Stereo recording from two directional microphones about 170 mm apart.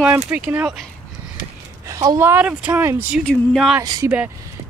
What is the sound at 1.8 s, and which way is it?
Speech, 20° right (ahead or behind).